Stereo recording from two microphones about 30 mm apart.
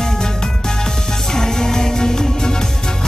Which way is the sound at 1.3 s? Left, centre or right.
Centre.